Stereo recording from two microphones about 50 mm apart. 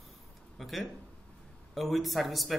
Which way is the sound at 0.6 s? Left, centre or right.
Centre.